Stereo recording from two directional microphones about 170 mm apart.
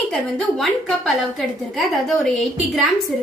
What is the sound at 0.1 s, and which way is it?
A woman's voice, centre (ahead or behind).